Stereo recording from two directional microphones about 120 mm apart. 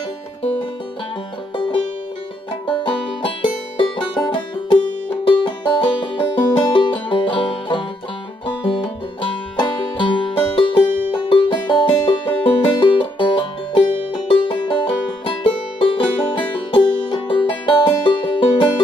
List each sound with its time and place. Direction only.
2.6 s music: 45° left (ahead or behind)